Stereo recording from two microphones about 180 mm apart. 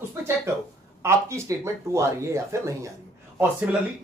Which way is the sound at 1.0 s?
15° right (ahead or behind).